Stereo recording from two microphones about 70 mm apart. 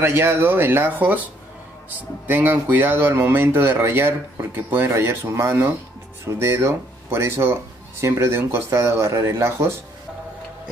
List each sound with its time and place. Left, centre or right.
0.0 s speech: right